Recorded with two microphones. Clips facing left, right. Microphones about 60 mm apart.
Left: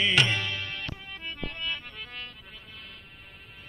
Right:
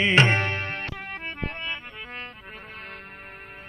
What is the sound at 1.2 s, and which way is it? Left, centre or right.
Music, right.